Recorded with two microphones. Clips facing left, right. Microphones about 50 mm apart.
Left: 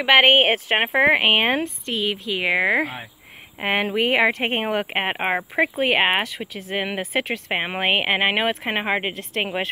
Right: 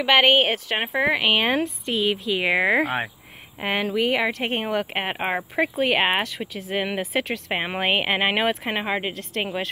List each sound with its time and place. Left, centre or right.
0.0 s speech: centre
0.4 s speech: left
1.6 s a woman's voice: centre
3.6 s speech: centre
3.9 s speech: left
9.1 s speech: centre